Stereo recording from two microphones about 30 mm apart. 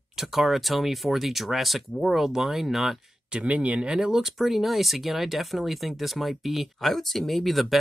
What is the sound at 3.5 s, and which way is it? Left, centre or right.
Speech, right.